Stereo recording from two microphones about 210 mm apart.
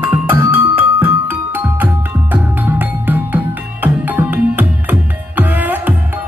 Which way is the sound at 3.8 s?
10° right (ahead or behind).